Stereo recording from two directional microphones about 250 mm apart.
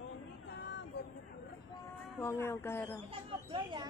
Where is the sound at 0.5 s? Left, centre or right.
Left.